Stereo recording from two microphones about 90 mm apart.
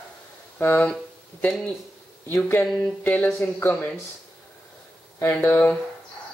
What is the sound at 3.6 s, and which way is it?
Speech, 20° left (ahead or behind).